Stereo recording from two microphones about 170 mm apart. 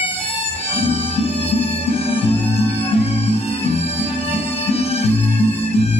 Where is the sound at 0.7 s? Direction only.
35° left (ahead or behind).